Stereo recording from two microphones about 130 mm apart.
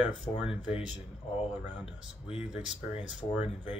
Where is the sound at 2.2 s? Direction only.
50° left (ahead or behind).